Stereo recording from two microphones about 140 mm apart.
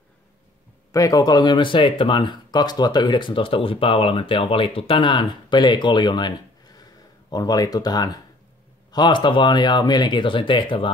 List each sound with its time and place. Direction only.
0.9 s speech: 25° left (ahead or behind)